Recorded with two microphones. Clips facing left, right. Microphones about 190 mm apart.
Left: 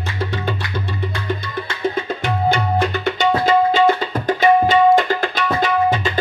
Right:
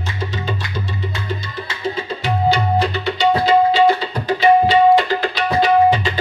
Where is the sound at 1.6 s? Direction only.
55° left (ahead or behind).